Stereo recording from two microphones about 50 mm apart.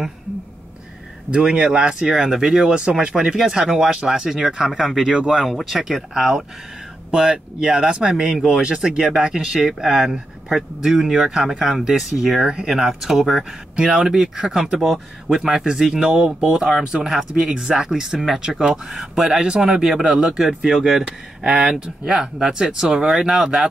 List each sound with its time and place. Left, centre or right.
1.3 s speech: centre
2.7 s speech: centre
5.0 s speech: centre
5.7 s speech: centre
7.1 s speech: centre
18.2 s speech: centre
19.4 s speech: centre
19.7 s speech: centre